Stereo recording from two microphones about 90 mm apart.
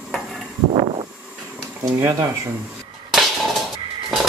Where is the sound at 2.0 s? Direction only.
40° right (ahead or behind).